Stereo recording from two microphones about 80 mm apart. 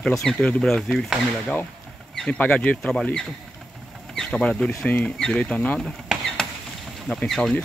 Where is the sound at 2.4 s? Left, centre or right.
Centre.